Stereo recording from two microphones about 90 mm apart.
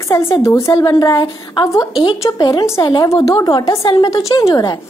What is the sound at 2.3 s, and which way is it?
A woman's voice, 50° left (ahead or behind).